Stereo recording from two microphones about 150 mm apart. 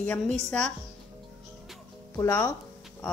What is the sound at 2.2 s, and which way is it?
Speech, 20° left (ahead or behind).